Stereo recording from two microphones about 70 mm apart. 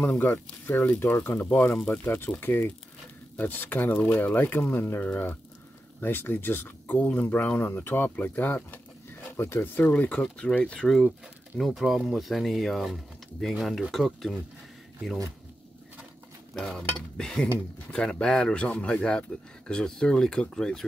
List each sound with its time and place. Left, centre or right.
0.0 s speech: left
11.5 s speech: centre
16.5 s speech: centre